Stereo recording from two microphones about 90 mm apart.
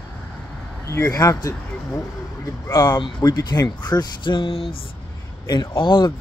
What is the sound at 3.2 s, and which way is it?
Speech, 45° left (ahead or behind).